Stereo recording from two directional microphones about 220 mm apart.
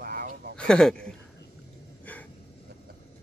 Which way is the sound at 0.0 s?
40° right (ahead or behind).